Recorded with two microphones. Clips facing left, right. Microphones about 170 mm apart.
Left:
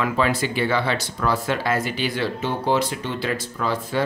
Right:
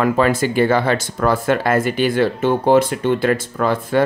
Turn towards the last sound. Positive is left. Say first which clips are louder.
# right 7 dB
turn(degrees=-55)  # may be behind; listen again after turning